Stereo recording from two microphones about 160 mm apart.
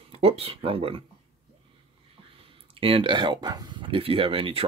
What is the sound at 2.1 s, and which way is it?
Speech, 35° right (ahead or behind).